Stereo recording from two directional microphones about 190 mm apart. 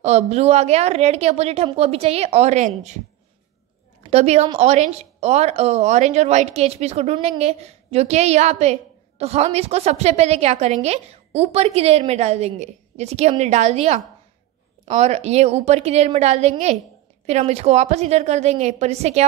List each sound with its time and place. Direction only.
0.0 s a woman's voice: 35° right (ahead or behind)
4.0 s a woman's voice: 35° right (ahead or behind)